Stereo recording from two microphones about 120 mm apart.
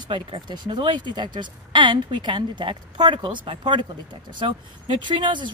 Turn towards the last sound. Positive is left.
turn(degrees=-40)  # may be behind; listen again after turning